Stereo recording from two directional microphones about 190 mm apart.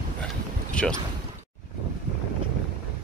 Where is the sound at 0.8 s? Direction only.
5° left (ahead or behind).